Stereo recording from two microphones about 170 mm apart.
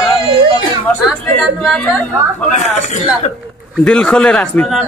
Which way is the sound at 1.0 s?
Centre (ahead or behind).